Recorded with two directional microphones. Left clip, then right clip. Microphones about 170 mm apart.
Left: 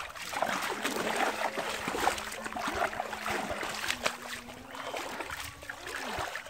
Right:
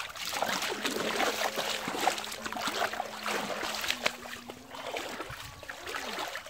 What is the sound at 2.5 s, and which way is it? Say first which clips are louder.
Boat: even; 15° right (ahead or behind).